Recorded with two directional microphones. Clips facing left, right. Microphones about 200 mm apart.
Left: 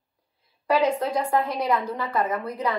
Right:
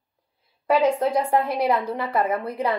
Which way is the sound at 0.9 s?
30° right (ahead or behind).